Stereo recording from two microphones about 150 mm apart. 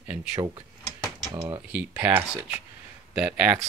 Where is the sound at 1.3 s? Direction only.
30° right (ahead or behind).